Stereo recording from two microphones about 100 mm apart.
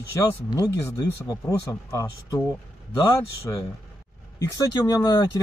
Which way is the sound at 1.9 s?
30° left (ahead or behind).